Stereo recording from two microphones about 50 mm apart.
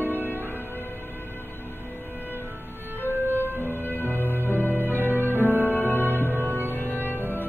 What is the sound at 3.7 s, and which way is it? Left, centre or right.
Music, left.